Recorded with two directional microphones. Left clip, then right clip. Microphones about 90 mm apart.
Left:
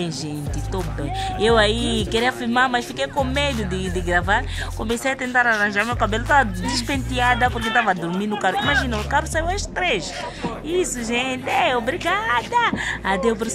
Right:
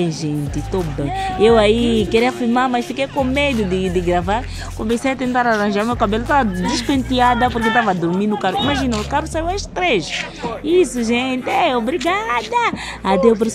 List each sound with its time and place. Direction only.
1.4 s speech: 25° right (ahead or behind)
5.9 s speech: 30° right (ahead or behind)
6.9 s speech: 40° right (ahead or behind)
7.6 s speech: centre (ahead or behind)
8.2 s speech: 20° right (ahead or behind)
8.5 s speech: 35° right (ahead or behind)
9.1 s speech: 20° right (ahead or behind)